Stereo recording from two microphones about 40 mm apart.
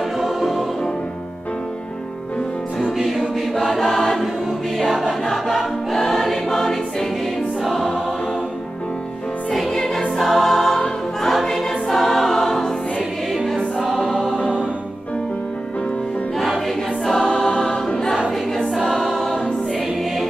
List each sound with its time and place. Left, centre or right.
0.2 s music: centre
3.0 s choir: centre
9.5 s music: centre
10.1 s choir: centre
14.3 s music: left
17.0 s choir: centre
18.7 s choir: centre